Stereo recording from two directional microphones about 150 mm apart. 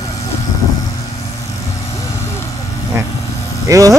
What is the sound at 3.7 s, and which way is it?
Sheep, 20° right (ahead or behind).